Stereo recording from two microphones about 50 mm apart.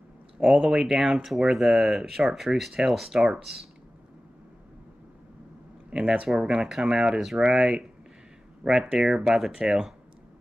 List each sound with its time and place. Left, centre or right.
0.4 s speech: centre
5.9 s speech: centre